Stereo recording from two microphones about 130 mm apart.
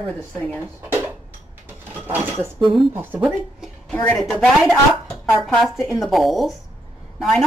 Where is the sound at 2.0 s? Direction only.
15° right (ahead or behind).